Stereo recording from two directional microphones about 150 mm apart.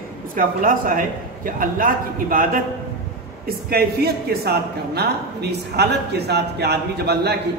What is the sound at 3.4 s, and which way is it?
Speech, 90° right.